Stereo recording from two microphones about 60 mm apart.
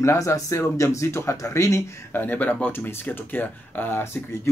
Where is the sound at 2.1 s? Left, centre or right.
Left.